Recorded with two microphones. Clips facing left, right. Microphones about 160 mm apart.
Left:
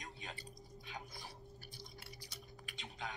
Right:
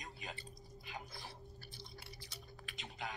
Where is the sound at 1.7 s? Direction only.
45° left (ahead or behind).